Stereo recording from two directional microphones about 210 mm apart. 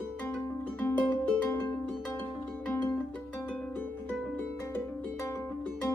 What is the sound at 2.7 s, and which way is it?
Music, 10° left (ahead or behind).